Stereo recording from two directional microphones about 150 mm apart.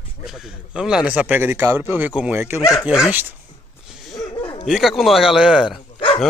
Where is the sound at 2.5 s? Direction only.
20° left (ahead or behind).